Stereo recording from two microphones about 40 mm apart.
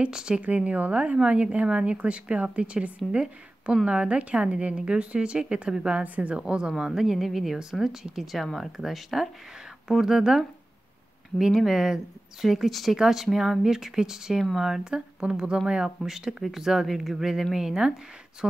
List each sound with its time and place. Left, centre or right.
0.1 s a woman's voice: centre
0.4 s a woman's voice: right
6.0 s a woman's voice: right
6.3 s a woman's voice: right
6.9 s speech: centre
8.5 s speech: centre
11.6 s speech: centre
15.0 s a woman's voice: right